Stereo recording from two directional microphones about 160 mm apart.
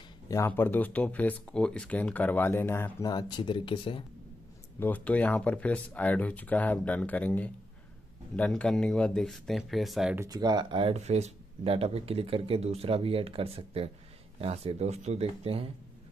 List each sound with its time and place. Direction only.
0.3 s speech: 15° left (ahead or behind); by 4.0 s 30° left (ahead or behind)
4.7 s speech: 10° left (ahead or behind)
10.1 s speech: 20° right (ahead or behind); by 15.6 s 40° right (ahead or behind)